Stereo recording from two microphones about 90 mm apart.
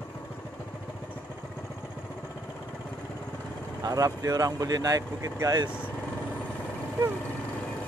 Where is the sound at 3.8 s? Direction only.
40° right (ahead or behind).